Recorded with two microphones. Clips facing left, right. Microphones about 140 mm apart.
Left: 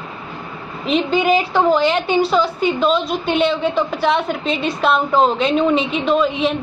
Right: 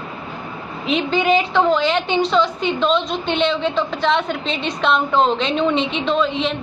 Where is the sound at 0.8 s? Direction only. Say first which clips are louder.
Left 2 dB; centre (ahead or behind).